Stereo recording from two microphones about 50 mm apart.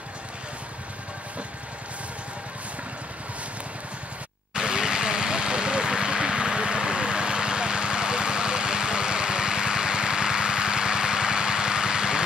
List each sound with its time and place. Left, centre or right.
4.6 s vehicle: centre